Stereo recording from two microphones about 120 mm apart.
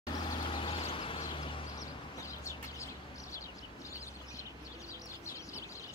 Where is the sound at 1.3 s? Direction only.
45° left (ahead or behind).